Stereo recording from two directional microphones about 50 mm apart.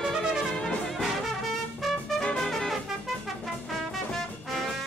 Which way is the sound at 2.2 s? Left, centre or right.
Centre.